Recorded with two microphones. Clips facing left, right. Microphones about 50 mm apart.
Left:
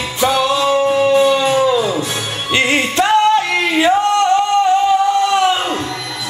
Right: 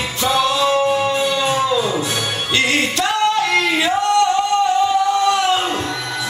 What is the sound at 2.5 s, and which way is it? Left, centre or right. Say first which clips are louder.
Music: left 4 dB; left.